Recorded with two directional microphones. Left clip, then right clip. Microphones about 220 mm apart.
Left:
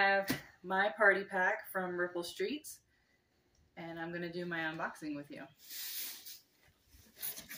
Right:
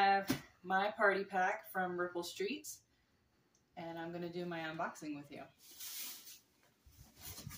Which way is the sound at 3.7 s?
15° right (ahead or behind).